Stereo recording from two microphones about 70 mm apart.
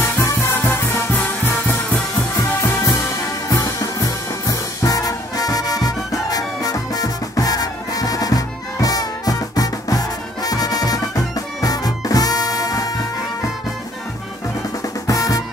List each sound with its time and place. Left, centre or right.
0.0 s music: left
3.4 s music: left
4.5 s music: left
15.0 s music: left